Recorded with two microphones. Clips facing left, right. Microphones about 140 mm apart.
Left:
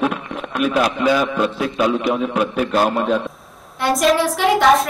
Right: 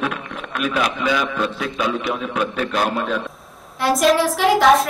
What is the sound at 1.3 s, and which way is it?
A man's voice, 10° left (ahead or behind).